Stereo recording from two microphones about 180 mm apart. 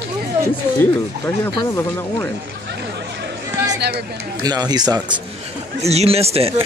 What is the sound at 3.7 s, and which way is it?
Chatter, 65° right (ahead or behind).